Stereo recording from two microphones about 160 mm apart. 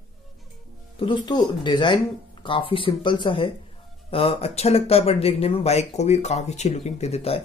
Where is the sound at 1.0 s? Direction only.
30° left (ahead or behind).